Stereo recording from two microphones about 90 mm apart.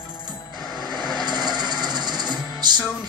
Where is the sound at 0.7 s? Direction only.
55° right (ahead or behind).